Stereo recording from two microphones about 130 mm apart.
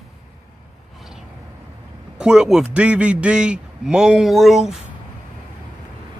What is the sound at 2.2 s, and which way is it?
A man's voice, 5° right (ahead or behind).